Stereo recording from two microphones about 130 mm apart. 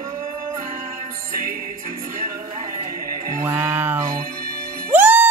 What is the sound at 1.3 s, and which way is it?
Music, 90° right.